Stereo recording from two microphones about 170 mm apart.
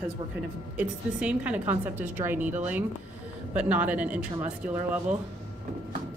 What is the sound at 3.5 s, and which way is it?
A woman's voice, 10° right (ahead or behind).